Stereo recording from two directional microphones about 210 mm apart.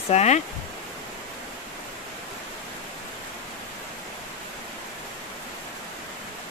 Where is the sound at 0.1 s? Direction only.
30° left (ahead or behind).